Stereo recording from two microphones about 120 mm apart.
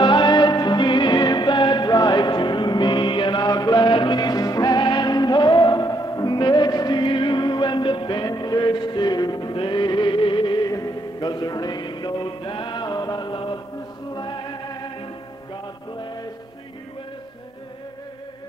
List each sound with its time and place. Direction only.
0.0 s music: 40° left (ahead or behind)